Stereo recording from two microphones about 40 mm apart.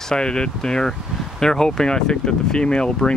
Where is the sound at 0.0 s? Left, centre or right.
Centre.